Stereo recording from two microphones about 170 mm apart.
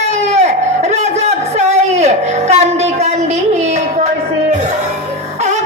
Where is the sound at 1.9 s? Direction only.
40° right (ahead or behind).